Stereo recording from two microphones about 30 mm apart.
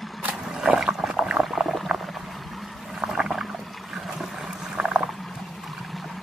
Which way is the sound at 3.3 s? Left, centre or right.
Centre.